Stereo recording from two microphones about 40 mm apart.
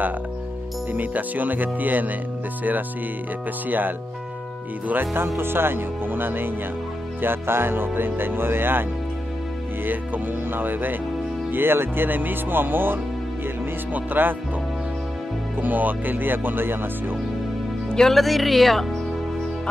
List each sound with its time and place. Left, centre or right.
0.9 s speech: right
3.6 s speech: right
5.1 s music: right
9.8 s music: right
11.5 s music: right
15.6 s music: right
17.8 s music: centre
18.1 s speech: centre